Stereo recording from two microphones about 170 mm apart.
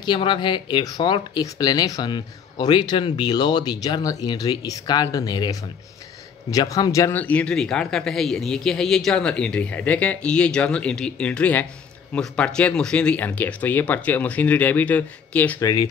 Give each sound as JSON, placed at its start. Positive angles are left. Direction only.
{"t": 0.0, "sound": "speech", "side_deg": 25}
{"t": 15.6, "sound": "speech", "side_deg": 25}